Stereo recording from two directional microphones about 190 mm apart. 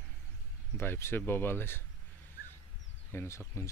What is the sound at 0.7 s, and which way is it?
Speech, 15° left (ahead or behind).